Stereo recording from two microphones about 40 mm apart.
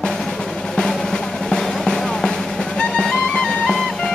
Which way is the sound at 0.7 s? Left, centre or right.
Centre.